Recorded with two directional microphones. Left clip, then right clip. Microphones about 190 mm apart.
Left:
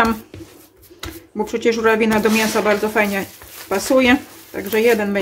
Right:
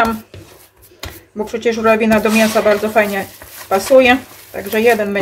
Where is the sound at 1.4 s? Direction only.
45° left (ahead or behind).